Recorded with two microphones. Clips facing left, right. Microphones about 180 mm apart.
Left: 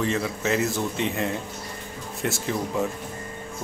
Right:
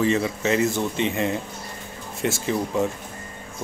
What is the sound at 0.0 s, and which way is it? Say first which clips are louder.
Speech: right 4 dB; centre (ahead or behind).